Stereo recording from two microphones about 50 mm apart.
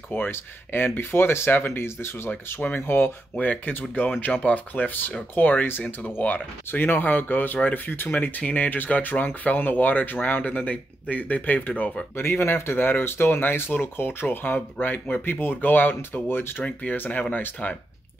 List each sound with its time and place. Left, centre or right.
0.1 s speech: left
1.7 s speech: left
3.3 s speech: left
4.3 s speech: left
4.7 s speech: left
12.2 s speech: left
16.9 s speech: left